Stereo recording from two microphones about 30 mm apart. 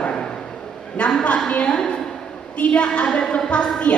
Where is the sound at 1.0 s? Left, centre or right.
Left.